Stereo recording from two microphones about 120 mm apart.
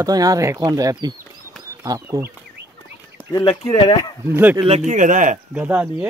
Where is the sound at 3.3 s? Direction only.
40° left (ahead or behind).